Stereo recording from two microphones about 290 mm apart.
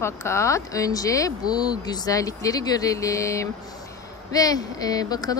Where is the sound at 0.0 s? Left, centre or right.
Centre.